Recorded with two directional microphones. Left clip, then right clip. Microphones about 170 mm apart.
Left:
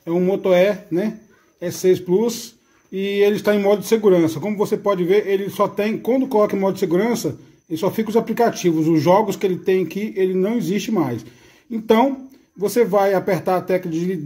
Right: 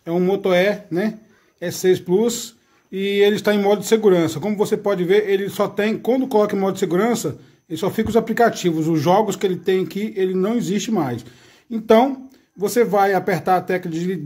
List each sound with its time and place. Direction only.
0.0 s speech: 30° right (ahead or behind)